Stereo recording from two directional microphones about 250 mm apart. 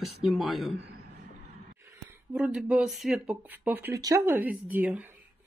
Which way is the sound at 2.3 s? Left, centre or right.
Centre.